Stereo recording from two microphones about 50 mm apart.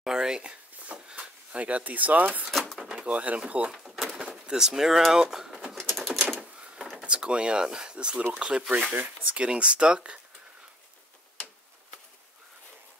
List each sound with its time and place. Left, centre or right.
0.0 s speech: centre; by 2.4 s right
2.5 s drawer open or close: centre
2.8 s speech: right
3.8 s bird: centre
4.3 s speech: centre
5.8 s typing: centre
6.6 s a sound: right
7.0 s speech: right
8.9 s speech: right